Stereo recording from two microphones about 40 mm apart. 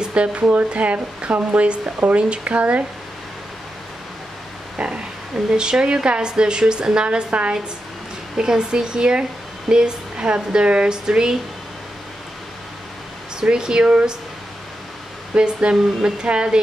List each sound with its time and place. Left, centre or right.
0.0 s speech: right
4.7 s a sound: right
5.6 s a woman's voice: right
8.4 s a woman's voice: centre
13.4 s a woman's voice: centre
15.3 s a woman's voice: right